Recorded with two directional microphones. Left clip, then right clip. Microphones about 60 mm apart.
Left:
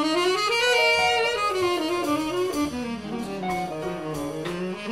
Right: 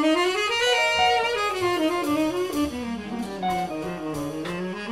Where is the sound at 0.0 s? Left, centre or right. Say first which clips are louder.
Right 1 dB; left.